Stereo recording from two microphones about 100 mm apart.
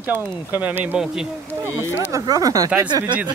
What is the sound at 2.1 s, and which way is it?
Speech, 35° right (ahead or behind).